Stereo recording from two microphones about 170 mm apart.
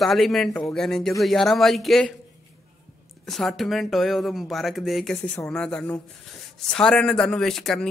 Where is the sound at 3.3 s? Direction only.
Centre (ahead or behind).